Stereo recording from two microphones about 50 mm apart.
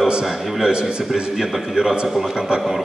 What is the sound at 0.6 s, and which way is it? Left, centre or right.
A man's voice, centre.